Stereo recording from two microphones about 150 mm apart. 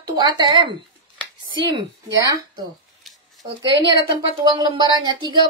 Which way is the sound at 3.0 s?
Centre (ahead or behind).